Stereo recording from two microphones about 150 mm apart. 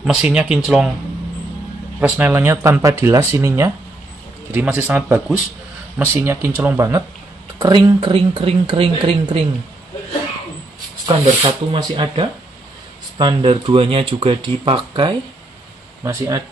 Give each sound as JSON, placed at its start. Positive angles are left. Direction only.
{"t": 0.0, "sound": "speech", "side_deg": -5}
{"t": 2.0, "sound": "speech", "side_deg": -10}
{"t": 11.4, "sound": "speech", "side_deg": -35}
{"t": 16.0, "sound": "speech", "side_deg": -20}